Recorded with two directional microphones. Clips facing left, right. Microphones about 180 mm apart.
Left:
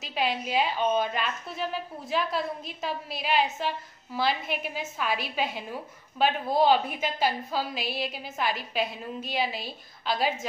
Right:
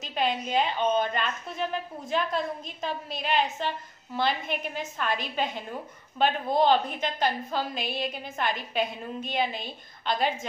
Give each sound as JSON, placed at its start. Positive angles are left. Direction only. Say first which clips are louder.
{"t": 0.0, "sound": "a woman's voice", "louder": "right 1 dB", "side_deg": 5}